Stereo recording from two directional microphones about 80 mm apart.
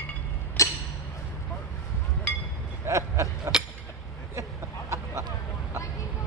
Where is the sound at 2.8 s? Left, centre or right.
Right.